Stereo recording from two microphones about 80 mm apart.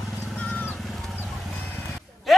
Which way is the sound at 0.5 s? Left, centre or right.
Left.